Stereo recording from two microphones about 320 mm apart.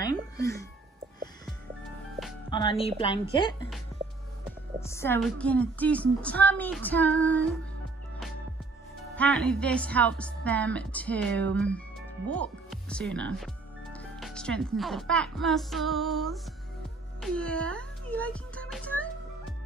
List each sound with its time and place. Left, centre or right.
0.4 s a woman's voice: centre
2.5 s a woman's voice: centre
4.7 s a woman's voice: centre
9.1 s a woman's voice: centre
17.2 s music: centre